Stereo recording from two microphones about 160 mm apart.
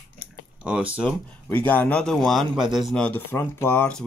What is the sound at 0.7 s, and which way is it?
Speech, 10° right (ahead or behind).